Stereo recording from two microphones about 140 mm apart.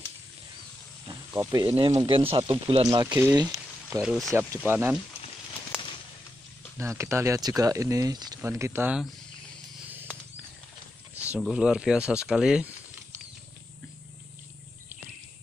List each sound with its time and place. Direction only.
1.3 s speech: 20° right (ahead or behind)
1.9 s speech: 35° right (ahead or behind)
3.0 s speech: 25° right (ahead or behind)
4.0 s speech: 5° right (ahead or behind)
4.3 s speech: 20° right (ahead or behind)
6.8 s speech: 20° right (ahead or behind)
11.3 s speech: 5° right (ahead or behind)